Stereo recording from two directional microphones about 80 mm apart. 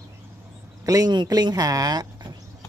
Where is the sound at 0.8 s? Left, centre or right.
Right.